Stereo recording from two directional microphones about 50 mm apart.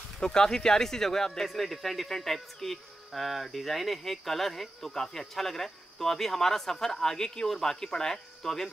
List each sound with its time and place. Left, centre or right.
0.2 s speech: centre